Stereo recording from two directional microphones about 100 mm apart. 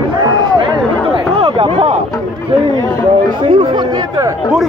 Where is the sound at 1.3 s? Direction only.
65° right (ahead or behind).